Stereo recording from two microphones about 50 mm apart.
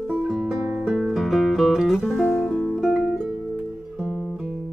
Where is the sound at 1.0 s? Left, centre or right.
Centre.